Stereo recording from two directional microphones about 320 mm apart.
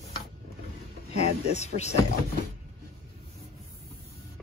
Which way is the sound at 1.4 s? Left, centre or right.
Centre.